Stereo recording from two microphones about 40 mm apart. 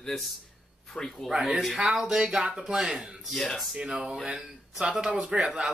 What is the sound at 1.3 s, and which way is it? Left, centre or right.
Speech, centre.